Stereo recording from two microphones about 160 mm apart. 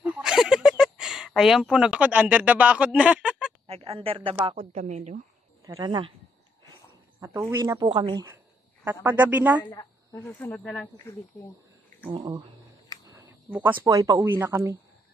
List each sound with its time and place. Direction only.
0.0 s a sound: 5° right (ahead or behind)
3.6 s a woman's voice: 40° right (ahead or behind)
5.8 s speech: 30° right (ahead or behind)
7.2 s speech: 15° right (ahead or behind)
9.0 s speech: 10° right (ahead or behind)
9.7 s speech: 15° left (ahead or behind)
12.1 s a woman's voice: 30° right (ahead or behind)
13.0 s a sound: 15° right (ahead or behind)
13.8 s speech: 20° right (ahead or behind)